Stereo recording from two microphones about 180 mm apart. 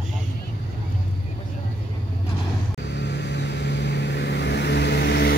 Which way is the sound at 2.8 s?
75° left (ahead or behind).